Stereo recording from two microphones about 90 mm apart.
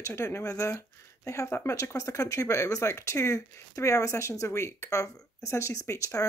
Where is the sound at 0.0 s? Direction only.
30° left (ahead or behind).